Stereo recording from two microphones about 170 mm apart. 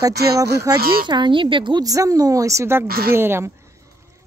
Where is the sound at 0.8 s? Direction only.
60° right (ahead or behind).